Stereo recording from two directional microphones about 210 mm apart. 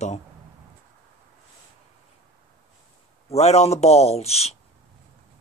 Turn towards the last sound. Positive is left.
turn(degrees=30)  # may be behind; listen again after turning